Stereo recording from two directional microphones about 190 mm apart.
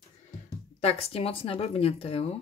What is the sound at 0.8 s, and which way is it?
Speech, 30° left (ahead or behind).